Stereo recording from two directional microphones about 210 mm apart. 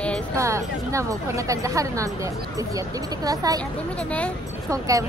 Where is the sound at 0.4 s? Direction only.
15° right (ahead or behind).